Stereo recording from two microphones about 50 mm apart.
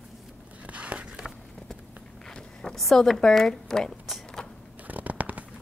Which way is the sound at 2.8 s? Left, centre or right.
Centre.